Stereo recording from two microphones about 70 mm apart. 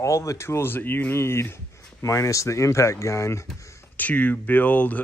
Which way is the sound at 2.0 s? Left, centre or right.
Left.